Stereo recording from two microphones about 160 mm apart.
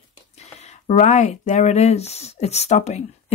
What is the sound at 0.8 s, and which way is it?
Speech, 45° left (ahead or behind).